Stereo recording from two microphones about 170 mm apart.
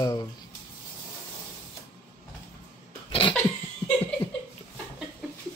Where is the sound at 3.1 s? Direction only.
30° left (ahead or behind).